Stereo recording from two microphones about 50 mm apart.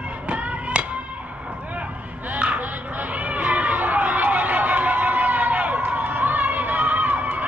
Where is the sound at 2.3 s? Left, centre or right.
Right.